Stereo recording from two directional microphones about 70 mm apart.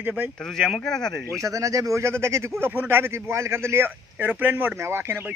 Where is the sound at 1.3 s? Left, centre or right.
Right.